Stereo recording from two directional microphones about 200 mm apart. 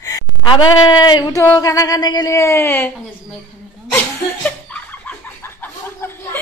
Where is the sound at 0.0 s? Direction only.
20° left (ahead or behind).